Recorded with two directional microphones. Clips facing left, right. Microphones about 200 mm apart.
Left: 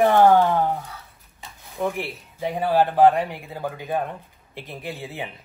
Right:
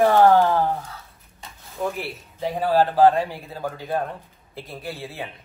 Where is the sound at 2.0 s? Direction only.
Centre (ahead or behind).